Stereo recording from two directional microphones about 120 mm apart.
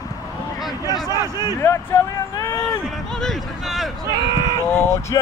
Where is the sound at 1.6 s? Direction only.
20° left (ahead or behind).